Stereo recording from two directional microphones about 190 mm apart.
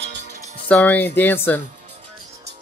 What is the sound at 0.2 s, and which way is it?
Music, 45° right (ahead or behind).